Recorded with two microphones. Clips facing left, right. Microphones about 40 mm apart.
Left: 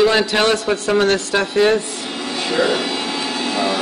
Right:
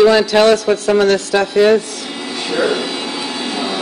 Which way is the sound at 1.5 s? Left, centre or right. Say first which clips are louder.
Right 4 dB; centre.